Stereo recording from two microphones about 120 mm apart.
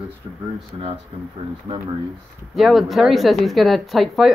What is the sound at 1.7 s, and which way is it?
Speech, 50° right (ahead or behind).